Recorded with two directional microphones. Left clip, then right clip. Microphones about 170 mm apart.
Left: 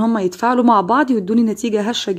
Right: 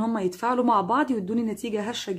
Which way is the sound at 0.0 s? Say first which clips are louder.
Left 9 dB; 35° left (ahead or behind).